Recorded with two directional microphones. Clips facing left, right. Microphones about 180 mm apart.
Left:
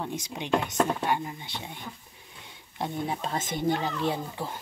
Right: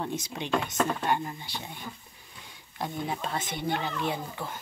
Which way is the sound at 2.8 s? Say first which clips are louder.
Left 2 dB; 30° left (ahead or behind).